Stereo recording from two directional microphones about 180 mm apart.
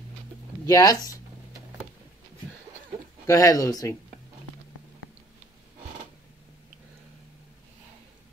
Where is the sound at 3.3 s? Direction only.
20° left (ahead or behind).